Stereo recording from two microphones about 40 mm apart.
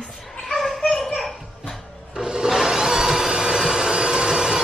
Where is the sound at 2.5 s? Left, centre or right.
Centre.